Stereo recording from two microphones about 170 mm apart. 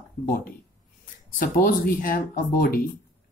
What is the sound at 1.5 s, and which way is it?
Speech, 60° left (ahead or behind).